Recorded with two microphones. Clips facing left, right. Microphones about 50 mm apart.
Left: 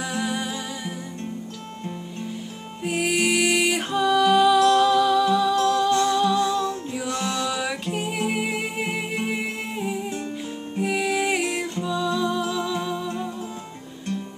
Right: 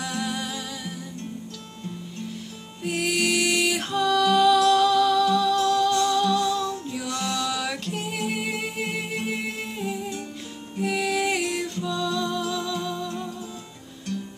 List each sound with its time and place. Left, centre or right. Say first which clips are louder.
0.0 s music: left 2 dB; centre
2.8 s music: left 2 dB; centre